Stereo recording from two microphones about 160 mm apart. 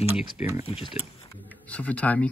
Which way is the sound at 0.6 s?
35° left (ahead or behind).